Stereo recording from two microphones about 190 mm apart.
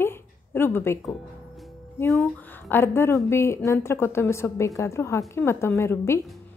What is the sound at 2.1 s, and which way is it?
A woman's voice, 10° left (ahead or behind).